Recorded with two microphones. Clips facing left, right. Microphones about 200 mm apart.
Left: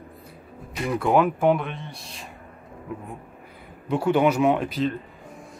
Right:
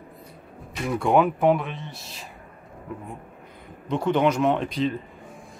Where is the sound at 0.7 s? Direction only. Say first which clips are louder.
Even; centre (ahead or behind).